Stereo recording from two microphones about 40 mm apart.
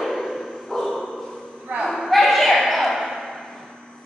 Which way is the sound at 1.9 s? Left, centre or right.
Centre.